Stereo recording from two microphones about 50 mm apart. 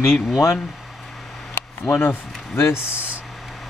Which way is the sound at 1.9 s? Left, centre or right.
Left.